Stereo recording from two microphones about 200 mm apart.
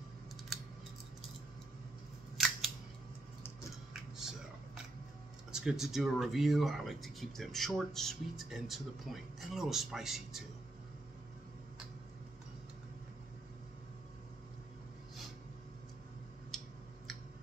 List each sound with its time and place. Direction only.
2.3 s scissors: centre (ahead or behind)
5.5 s speech: 5° right (ahead or behind)
16.5 s tick-tock: centre (ahead or behind)